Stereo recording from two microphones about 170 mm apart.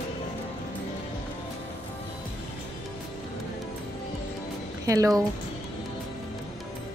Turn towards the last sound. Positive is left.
turn(degrees=-20)  # may be behind; listen again after turning